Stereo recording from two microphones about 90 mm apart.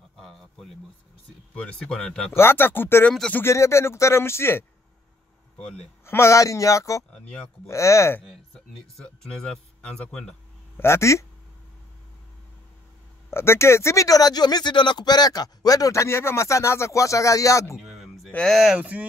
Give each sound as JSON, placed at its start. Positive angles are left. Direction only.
{"t": 0.2, "sound": "a sound", "side_deg": 0}
{"t": 1.5, "sound": "speech", "side_deg": 15}
{"t": 2.3, "sound": "a man's voice", "side_deg": 25}
{"t": 3.1, "sound": "speech", "side_deg": 15}
{"t": 3.4, "sound": "a man's voice", "side_deg": 30}
{"t": 6.0, "sound": "speech", "side_deg": 30}
{"t": 8.9, "sound": "speech", "side_deg": 5}
{"t": 10.8, "sound": "speech", "side_deg": 30}
{"t": 13.3, "sound": "speech", "side_deg": 30}
{"t": 17.7, "sound": "a sound", "side_deg": -5}
{"t": 18.5, "sound": "speech", "side_deg": -5}
{"t": 18.8, "sound": "speech", "side_deg": -15}